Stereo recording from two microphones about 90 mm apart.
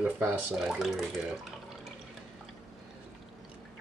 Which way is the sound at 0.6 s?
5° right (ahead or behind).